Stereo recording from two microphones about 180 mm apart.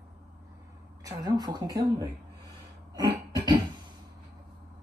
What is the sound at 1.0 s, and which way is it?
Speech, 20° right (ahead or behind).